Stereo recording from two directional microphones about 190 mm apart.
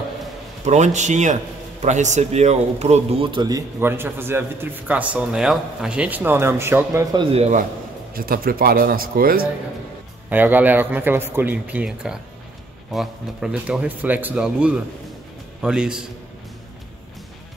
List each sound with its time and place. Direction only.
0.7 s a man's voice: 40° right (ahead or behind)
8.1 s speech: 50° right (ahead or behind)
10.3 s speech: 10° right (ahead or behind)